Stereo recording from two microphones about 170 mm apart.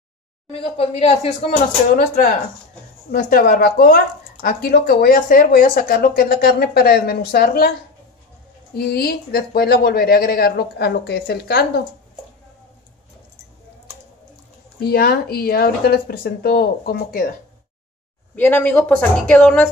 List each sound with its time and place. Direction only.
0.5 s speech: 35° left (ahead or behind)
2.0 s speech: 50° left (ahead or behind)
8.7 s speech: 65° left (ahead or behind)
14.8 s speech: 65° left (ahead or behind)
18.3 s a woman's voice: 10° left (ahead or behind)